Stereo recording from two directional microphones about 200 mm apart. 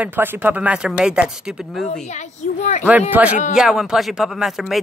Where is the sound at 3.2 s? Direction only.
5° right (ahead or behind).